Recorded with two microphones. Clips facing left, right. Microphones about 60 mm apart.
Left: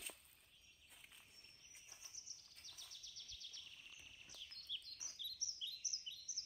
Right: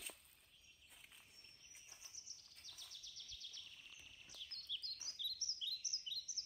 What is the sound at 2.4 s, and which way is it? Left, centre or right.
Bird, centre.